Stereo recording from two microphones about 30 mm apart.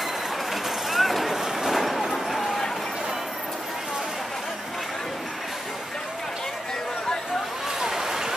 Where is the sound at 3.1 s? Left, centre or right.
Centre.